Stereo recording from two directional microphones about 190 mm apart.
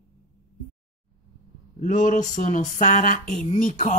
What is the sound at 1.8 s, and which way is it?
Speech, 40° left (ahead or behind).